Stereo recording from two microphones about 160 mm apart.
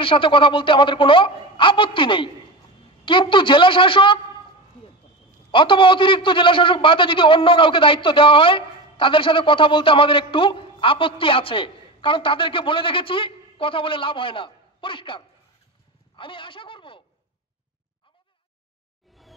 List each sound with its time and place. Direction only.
0.0 s a man's voice: 35° left (ahead or behind)
5.5 s a man's voice: 30° left (ahead or behind)
16.2 s a sound: 30° left (ahead or behind)